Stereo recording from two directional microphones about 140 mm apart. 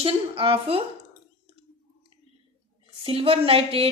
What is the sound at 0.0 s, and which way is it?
Speech, 40° right (ahead or behind).